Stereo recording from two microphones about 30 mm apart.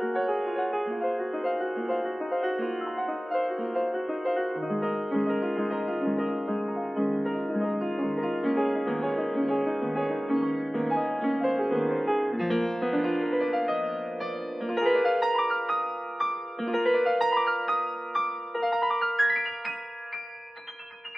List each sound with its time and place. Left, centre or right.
0.0 s music: centre